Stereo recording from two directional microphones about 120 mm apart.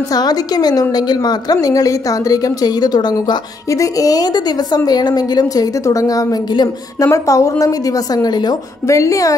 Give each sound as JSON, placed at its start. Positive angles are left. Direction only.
{"t": 0.1, "sound": "a woman's voice", "side_deg": 35}